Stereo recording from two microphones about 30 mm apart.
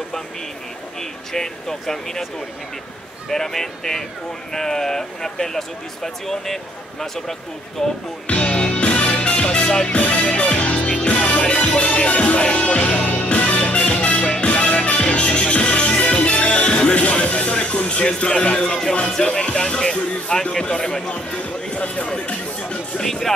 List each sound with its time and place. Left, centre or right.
1.3 s speech: centre
3.3 s speech: centre
8.5 s music: left
11.4 s music: left
18.6 s speech: left
19.4 s speech: left
21.1 s speech: left
22.9 s speech: centre